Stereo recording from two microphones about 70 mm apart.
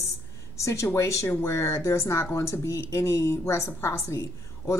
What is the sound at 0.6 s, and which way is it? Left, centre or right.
Speech, left.